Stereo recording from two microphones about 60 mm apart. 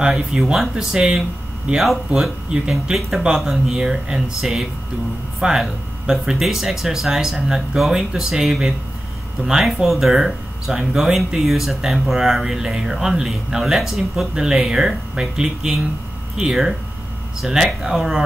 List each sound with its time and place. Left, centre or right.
0.0 s speech: centre
17.4 s speech: centre